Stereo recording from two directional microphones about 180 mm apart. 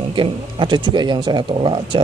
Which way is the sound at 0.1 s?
25° right (ahead or behind).